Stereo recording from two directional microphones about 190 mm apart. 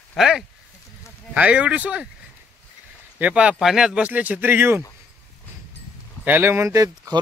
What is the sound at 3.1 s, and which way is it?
Speech, 5° right (ahead or behind).